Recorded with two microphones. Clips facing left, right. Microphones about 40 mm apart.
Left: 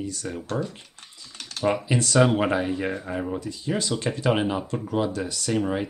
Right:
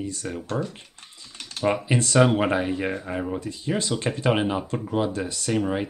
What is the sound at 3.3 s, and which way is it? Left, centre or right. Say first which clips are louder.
Speech: right 1 dB; right.